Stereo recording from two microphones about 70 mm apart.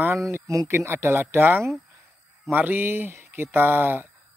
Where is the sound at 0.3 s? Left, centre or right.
Right.